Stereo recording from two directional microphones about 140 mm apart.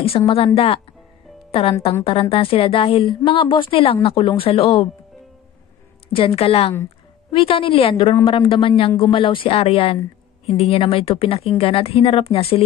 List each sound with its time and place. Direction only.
0.2 s a woman's voice: 40° left (ahead or behind)
1.5 s a woman's voice: 45° left (ahead or behind)
6.1 s a woman's voice: 45° left (ahead or behind)